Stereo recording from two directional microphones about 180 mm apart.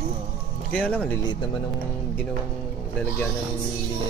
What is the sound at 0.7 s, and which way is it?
Speech, 5° left (ahead or behind).